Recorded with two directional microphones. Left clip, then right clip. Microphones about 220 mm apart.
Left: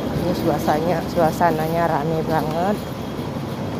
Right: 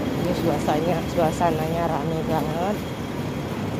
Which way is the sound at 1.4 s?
15° left (ahead or behind).